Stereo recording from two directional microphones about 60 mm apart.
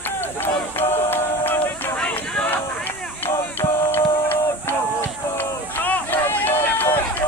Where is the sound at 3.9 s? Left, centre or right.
Left.